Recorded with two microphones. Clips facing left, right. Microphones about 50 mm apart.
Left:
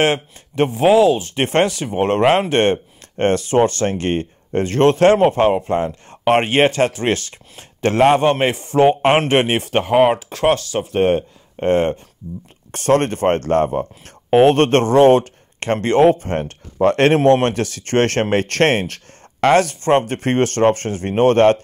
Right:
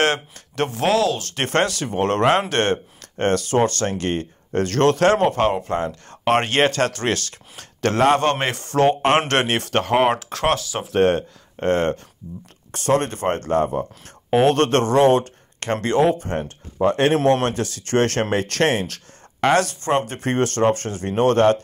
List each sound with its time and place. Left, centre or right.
0.0 s speech: centre
11.6 s speech: centre
12.7 s speech: left
13.7 s speech: left
16.7 s speech: left
17.2 s speech: left